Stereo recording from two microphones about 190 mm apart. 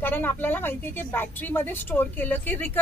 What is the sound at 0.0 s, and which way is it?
A woman's voice, 10° left (ahead or behind).